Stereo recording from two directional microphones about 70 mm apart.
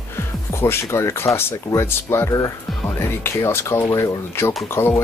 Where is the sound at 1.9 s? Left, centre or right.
Left.